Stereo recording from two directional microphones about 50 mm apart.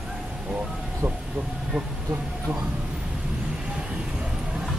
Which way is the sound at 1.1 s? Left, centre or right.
Right.